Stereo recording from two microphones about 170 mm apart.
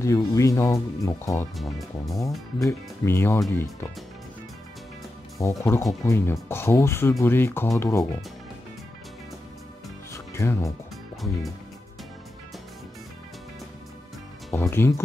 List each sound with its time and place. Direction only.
0.0 s speech: 20° left (ahead or behind)
1.6 s speech: centre (ahead or behind)
2.6 s speech: 15° left (ahead or behind)
5.4 s speech: 15° left (ahead or behind)
10.1 s music: 15° left (ahead or behind)
14.5 s speech: 15° left (ahead or behind)